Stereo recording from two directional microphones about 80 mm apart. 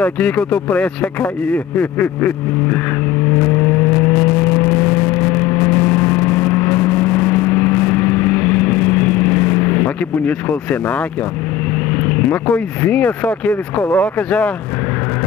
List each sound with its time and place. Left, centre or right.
0.0 s speech: centre
3.3 s vehicle: left
12.0 s speech: centre